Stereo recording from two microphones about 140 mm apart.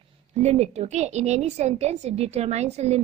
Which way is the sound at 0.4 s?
50° right (ahead or behind).